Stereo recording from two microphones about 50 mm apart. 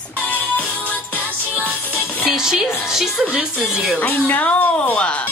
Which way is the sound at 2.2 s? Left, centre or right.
Centre.